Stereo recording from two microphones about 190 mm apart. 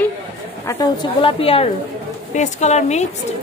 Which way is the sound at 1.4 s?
30° left (ahead or behind).